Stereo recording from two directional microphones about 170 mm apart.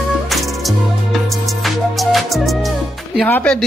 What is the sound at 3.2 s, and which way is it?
Speech, 10° left (ahead or behind).